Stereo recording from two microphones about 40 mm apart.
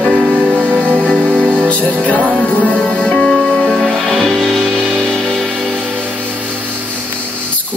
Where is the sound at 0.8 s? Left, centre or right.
Right.